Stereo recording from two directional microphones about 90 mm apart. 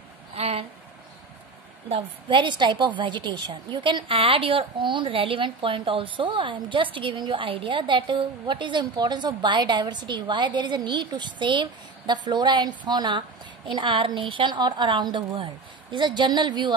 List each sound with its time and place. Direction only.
0.3 s a sound: 90° right
1.9 s a woman's voice: 65° right (ahead or behind)
13.7 s a woman's voice: 65° right (ahead or behind)